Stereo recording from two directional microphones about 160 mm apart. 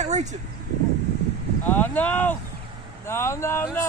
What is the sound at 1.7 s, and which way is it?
Speech, 10° left (ahead or behind).